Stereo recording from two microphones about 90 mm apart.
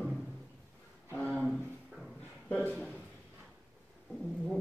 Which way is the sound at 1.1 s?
15° left (ahead or behind).